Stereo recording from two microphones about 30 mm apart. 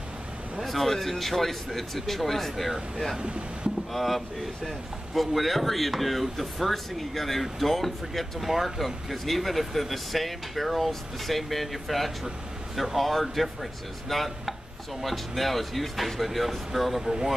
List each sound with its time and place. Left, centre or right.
0.6 s speech: centre
3.2 s speech: right
3.9 s speech: centre
17.0 s speech: centre